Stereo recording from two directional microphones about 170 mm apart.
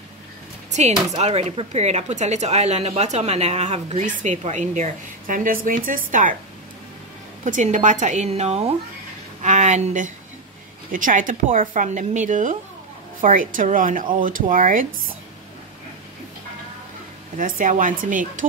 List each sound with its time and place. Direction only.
0.7 s music: 45° right (ahead or behind)
1.1 s speech: 40° right (ahead or behind)
7.4 s speech: 50° right (ahead or behind)
17.4 s speech: 50° right (ahead or behind)